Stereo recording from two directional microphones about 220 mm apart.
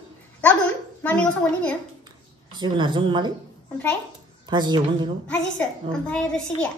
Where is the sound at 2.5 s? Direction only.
20° right (ahead or behind).